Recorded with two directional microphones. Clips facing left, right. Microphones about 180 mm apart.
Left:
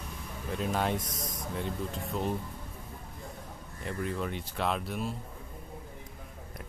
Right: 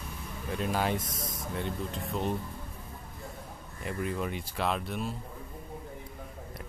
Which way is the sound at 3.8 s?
10° right (ahead or behind).